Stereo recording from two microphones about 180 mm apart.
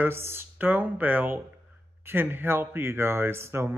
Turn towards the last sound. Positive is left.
turn(degrees=-15)  # may be behind; listen again after turning